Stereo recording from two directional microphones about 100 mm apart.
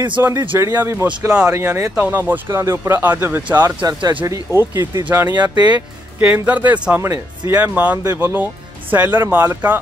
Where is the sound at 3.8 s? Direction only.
35° right (ahead or behind).